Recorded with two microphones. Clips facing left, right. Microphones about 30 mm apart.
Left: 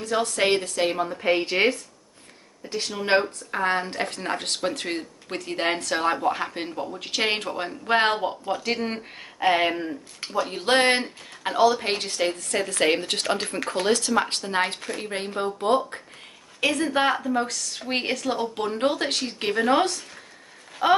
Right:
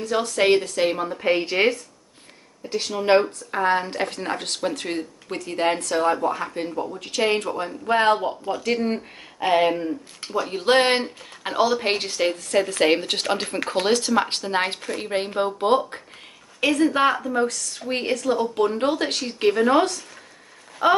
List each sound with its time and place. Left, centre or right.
0.0 s speech: centre
3.0 s speech: centre; by 8.1 s left
8.1 s speech: centre
8.7 s speech: left
9.4 s speech: centre
10.3 s speech: centre
16.6 s speech: centre
17.7 s speech: left
18.6 s speech: centre